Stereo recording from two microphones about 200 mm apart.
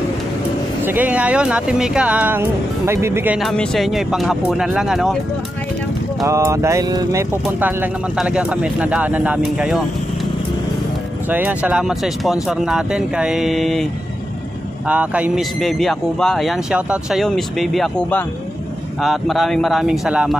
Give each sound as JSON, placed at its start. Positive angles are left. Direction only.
{"t": 0.8, "sound": "speech", "side_deg": -10}
{"t": 3.3, "sound": "speech", "side_deg": 0}
{"t": 6.2, "sound": "speech", "side_deg": -15}
{"t": 7.4, "sound": "speech", "side_deg": -5}
{"t": 11.2, "sound": "speech", "side_deg": -10}
{"t": 14.9, "sound": "speech", "side_deg": -5}